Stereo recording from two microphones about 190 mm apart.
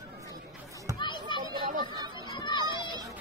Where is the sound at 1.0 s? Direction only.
25° left (ahead or behind).